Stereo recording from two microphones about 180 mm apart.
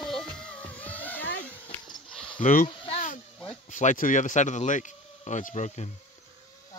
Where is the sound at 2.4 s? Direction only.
45° left (ahead or behind).